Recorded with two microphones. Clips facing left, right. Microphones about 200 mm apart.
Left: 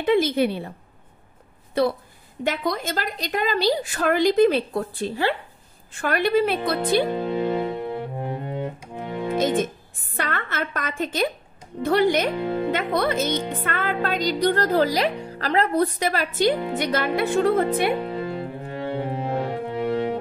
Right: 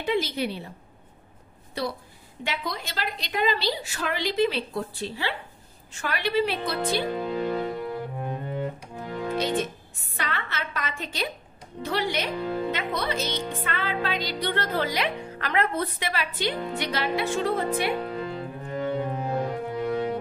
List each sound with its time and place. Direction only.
0.0 s a woman's voice: 55° left (ahead or behind)
1.8 s a woman's voice: 50° left (ahead or behind)
7.1 s music: 25° left (ahead or behind)
9.4 s a woman's voice: 50° left (ahead or behind)
12.4 s speech: 20° left (ahead or behind)
12.7 s a woman's voice: 50° left (ahead or behind)
18.0 s music: 25° left (ahead or behind)